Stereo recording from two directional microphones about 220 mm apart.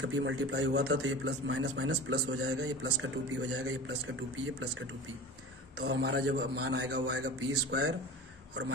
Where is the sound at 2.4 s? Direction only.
70° right (ahead or behind).